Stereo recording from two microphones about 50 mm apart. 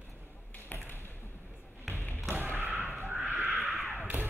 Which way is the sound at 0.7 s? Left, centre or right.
Left.